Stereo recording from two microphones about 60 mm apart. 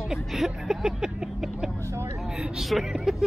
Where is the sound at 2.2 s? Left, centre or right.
Centre.